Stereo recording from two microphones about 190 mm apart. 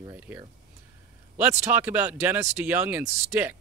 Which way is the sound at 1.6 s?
10° right (ahead or behind).